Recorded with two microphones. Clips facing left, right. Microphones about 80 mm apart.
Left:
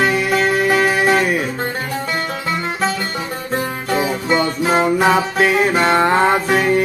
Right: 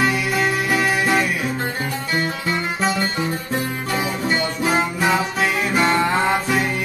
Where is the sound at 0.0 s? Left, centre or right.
Left.